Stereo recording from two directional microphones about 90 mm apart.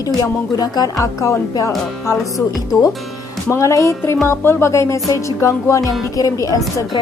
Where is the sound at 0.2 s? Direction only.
45° left (ahead or behind).